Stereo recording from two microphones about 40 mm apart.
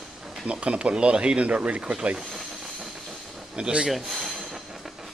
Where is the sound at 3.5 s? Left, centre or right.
Right.